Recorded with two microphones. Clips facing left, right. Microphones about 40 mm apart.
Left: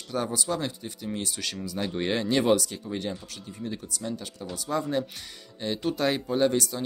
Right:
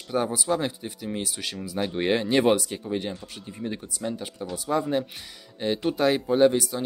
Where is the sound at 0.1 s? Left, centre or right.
Centre.